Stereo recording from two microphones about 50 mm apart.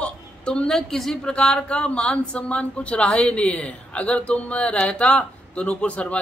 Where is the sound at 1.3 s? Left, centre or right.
Left.